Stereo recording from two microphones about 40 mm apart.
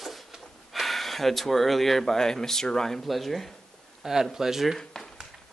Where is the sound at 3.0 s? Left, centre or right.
Centre.